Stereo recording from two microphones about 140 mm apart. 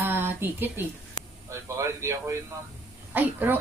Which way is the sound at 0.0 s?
15° right (ahead or behind).